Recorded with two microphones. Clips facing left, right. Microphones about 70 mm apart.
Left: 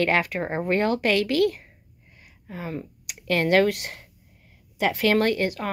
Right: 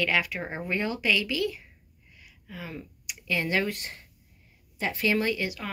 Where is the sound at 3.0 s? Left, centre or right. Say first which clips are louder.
Left 6 dB; left.